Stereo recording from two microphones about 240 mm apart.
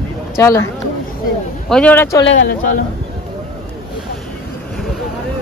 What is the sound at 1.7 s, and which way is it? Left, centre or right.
Speech, centre.